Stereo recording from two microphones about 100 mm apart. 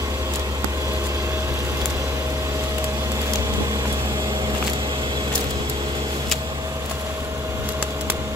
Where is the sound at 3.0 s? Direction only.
35° right (ahead or behind).